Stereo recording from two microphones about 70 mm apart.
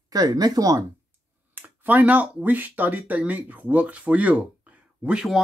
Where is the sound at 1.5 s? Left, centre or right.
Right.